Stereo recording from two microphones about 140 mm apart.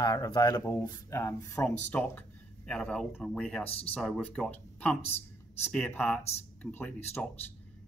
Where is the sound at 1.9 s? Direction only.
10° left (ahead or behind).